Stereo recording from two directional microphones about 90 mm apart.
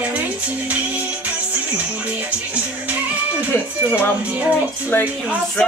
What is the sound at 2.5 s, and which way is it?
Speech, 15° right (ahead or behind).